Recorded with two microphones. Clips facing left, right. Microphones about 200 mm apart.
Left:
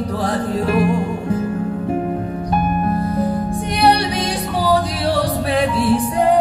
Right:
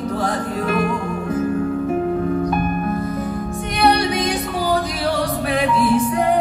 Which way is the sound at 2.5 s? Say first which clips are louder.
Left 2 dB; 30° left (ahead or behind).